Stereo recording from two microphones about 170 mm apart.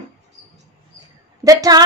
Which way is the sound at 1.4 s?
20° right (ahead or behind).